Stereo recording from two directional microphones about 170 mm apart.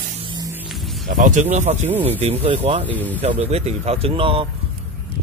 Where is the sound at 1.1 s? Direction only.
45° right (ahead or behind); by 4.5 s 30° right (ahead or behind).